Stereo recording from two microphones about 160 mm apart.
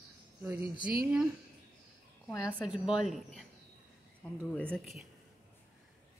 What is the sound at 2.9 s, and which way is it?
Speech, centre (ahead or behind).